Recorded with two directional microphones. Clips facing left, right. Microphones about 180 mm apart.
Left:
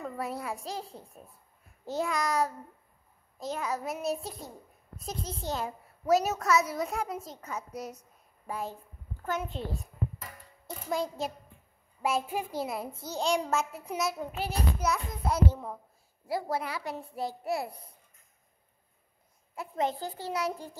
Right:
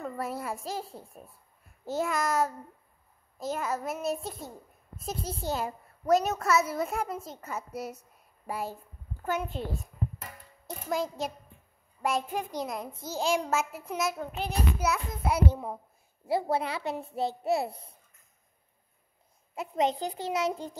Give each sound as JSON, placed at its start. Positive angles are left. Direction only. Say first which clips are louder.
{"t": 0.0, "sound": "a child's voice", "louder": "right 1 dB", "side_deg": 0}
{"t": 10.9, "sound": "a child's voice", "louder": "right 1 dB", "side_deg": 0}
{"t": 16.3, "sound": "a child's voice", "louder": "right 4 dB", "side_deg": -25}
{"t": 19.5, "sound": "a child's voice", "louder": "right 3 dB", "side_deg": -20}